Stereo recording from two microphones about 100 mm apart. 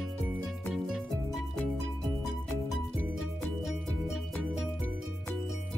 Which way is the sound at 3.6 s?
5° right (ahead or behind).